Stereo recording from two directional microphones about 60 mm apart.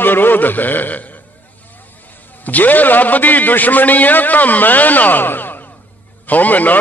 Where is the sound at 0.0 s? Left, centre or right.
Left.